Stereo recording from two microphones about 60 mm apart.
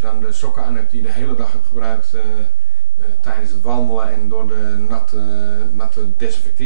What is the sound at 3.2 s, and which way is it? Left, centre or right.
Speech, centre.